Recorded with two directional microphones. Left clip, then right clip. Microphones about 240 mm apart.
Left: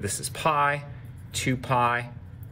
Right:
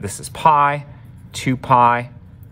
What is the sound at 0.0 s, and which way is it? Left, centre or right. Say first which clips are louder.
Speech: right 11 dB; centre.